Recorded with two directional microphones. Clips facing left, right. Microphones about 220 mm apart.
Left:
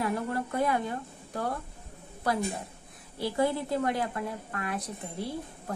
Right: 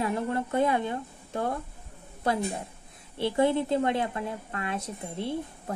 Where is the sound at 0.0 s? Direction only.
25° right (ahead or behind).